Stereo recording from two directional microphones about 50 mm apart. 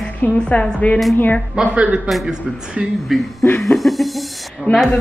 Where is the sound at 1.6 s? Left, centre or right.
Right.